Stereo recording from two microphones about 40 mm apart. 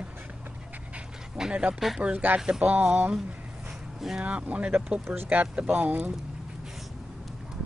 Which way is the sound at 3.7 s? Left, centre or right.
Centre.